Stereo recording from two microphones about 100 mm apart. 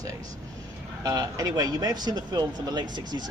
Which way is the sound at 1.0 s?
40° right (ahead or behind).